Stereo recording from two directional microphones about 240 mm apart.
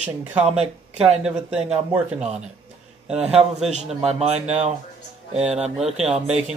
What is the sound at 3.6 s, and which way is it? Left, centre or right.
A man's voice, right.